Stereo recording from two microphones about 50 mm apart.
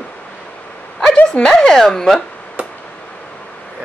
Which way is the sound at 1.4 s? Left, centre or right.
Centre.